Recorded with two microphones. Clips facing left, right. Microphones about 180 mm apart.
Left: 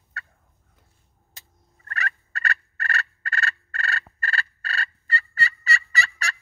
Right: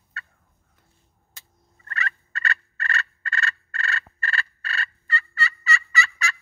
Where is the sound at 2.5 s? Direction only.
40° left (ahead or behind).